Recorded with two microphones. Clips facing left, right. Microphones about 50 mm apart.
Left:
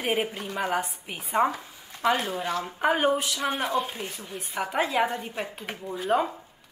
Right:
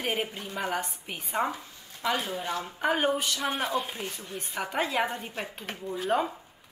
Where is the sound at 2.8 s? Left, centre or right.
Centre.